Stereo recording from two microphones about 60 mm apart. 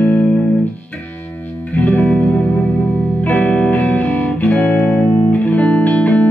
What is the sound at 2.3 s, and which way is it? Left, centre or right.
Music, left.